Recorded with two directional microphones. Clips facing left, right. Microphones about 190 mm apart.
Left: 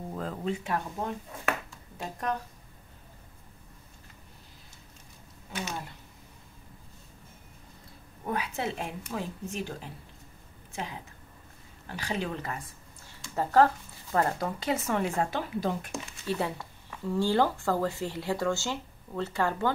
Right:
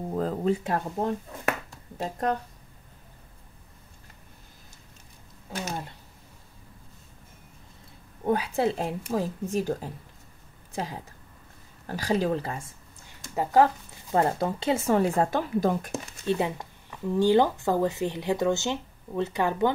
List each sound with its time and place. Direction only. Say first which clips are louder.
0.1 s speech: right 7 dB; 40° right (ahead or behind)
1.7 s a sound: right 6 dB; 35° right (ahead or behind)
8.2 s speech: right 7 dB; 30° right (ahead or behind)
13.3 s speech: right 2 dB; 15° right (ahead or behind)
14.1 s speech: right 4 dB; 25° right (ahead or behind); by 15.9 s 45° right (ahead or behind)
16.3 s speech: right 5 dB; 20° right (ahead or behind)